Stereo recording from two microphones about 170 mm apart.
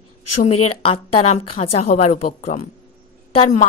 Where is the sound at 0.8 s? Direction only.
35° left (ahead or behind).